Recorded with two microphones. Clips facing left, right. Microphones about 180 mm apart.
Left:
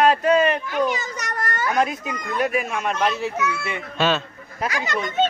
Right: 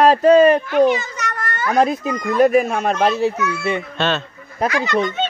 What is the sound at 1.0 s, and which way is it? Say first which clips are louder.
Children playing: right 2 dB; 40° left (ahead or behind).